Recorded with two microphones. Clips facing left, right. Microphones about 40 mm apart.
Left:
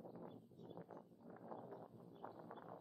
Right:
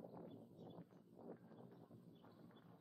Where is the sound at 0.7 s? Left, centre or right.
Centre.